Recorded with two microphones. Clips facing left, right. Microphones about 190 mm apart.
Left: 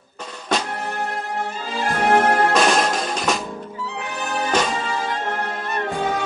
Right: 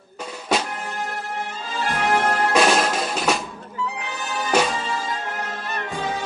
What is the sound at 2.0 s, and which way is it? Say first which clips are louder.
Music: left 5 dB; 55° left (ahead or behind).